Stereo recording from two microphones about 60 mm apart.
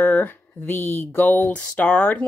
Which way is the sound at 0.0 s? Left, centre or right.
Left.